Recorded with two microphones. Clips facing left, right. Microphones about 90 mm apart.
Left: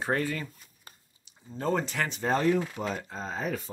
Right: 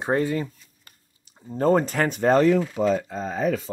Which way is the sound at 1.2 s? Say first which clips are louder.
Right 10 dB; 45° right (ahead or behind).